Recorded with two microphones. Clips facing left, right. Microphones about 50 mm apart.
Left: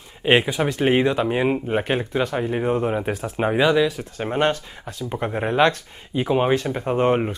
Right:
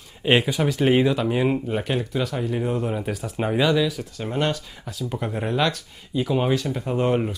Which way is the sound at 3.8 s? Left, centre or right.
Left.